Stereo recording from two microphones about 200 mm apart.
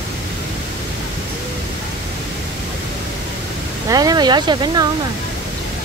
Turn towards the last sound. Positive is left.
turn(degrees=-20)  # may be behind; listen again after turning